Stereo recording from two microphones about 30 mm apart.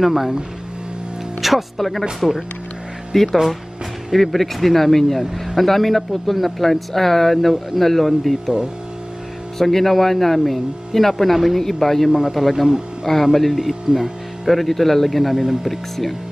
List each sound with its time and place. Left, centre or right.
0.0 s speech: centre
1.4 s speech: centre
4.1 s speech: centre
9.6 s speech: centre
12.1 s speech: centre
12.4 s speech: centre
14.4 s speech: centre